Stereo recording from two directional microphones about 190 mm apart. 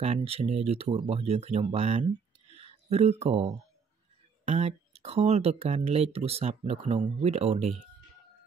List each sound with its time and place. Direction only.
0.0 s speech: 35° right (ahead or behind)